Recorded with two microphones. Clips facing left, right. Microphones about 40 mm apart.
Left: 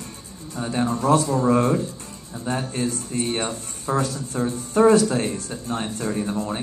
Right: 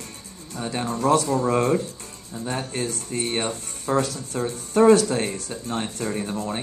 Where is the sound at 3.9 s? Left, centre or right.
Right.